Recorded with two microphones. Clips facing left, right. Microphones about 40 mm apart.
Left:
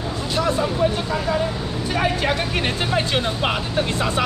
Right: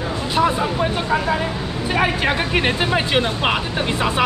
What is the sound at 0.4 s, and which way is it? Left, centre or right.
Speech, right.